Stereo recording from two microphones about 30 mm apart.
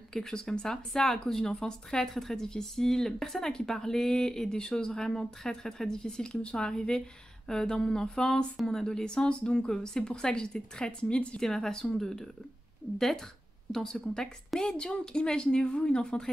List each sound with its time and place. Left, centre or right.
0.1 s speech: centre
9.2 s speech: left
11.3 s speech: centre
13.7 s speech: centre; by 16.2 s left